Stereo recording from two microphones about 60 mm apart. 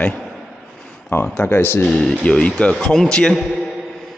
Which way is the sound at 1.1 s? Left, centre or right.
Left.